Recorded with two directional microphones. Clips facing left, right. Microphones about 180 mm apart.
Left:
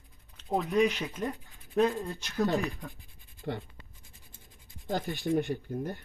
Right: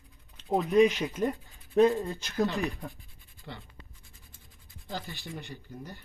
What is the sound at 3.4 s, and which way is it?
Speech, 45° left (ahead or behind).